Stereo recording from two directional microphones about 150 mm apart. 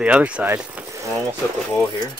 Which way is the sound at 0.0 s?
10° right (ahead or behind).